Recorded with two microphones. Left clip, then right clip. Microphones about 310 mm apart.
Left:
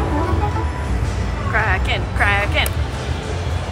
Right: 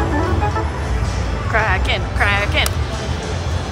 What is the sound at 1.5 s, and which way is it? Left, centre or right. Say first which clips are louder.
Music: right 2 dB; centre.